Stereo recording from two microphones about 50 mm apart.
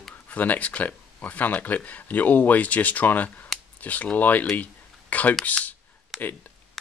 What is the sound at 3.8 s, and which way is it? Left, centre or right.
Speech, left.